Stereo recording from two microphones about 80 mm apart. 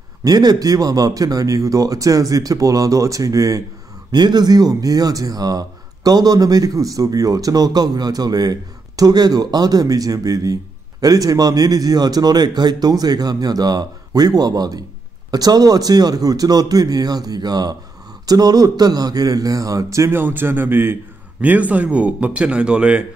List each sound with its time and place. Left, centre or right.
0.2 s speech: right
4.1 s a man's voice: right
21.4 s speech: centre